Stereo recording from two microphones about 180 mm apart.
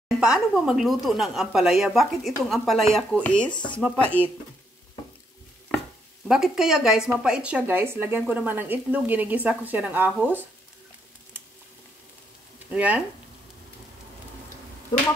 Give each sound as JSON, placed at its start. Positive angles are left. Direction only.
{"t": 0.2, "sound": "speech", "side_deg": -5}
{"t": 3.5, "sound": "speech", "side_deg": 25}
{"t": 3.8, "sound": "speech", "side_deg": 5}
{"t": 6.2, "sound": "a woman's voice", "side_deg": 0}
{"t": 12.6, "sound": "speech", "side_deg": -5}